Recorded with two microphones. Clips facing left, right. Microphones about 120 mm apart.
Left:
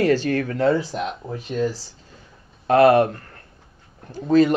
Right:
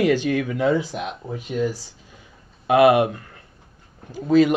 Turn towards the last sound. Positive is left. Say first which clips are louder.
# even
turn(degrees=-10)  # may be behind; listen again after turning